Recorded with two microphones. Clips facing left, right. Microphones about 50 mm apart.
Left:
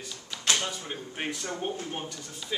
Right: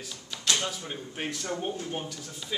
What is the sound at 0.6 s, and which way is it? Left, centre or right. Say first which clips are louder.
Speech: even; centre.